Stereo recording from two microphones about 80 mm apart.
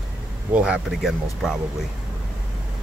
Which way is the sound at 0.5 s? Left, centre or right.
Centre.